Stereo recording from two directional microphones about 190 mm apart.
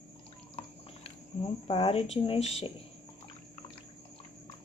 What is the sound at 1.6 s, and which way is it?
Speech, 30° left (ahead or behind).